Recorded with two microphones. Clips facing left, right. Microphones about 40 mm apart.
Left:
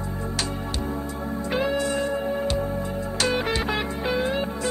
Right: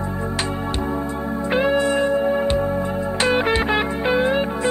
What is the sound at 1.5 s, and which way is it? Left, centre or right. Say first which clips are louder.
Music: right 6 dB; right.